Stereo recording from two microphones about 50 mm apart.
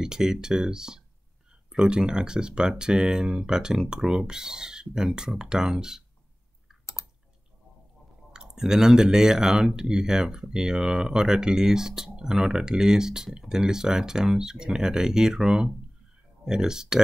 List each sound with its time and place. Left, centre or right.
0.0 s speech: centre
8.3 s speech: centre